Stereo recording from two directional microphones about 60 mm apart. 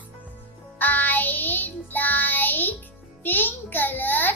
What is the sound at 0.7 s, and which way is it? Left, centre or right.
Child singing, left.